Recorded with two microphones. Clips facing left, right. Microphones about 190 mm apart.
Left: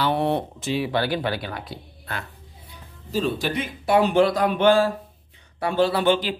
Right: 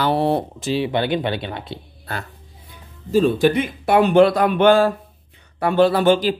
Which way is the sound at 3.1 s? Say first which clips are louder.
Right 9 dB; 50° right (ahead or behind).